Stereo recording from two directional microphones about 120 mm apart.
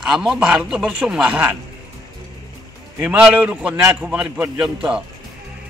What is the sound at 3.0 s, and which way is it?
A man's voice, 10° right (ahead or behind).